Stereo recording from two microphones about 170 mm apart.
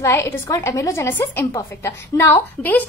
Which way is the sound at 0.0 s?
15° left (ahead or behind).